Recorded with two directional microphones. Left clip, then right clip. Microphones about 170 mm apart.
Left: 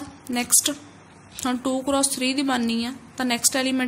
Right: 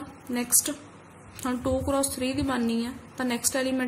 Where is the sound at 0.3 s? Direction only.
20° left (ahead or behind).